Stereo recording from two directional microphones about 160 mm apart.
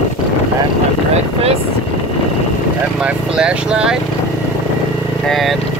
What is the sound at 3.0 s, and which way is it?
Speech, 5° right (ahead or behind).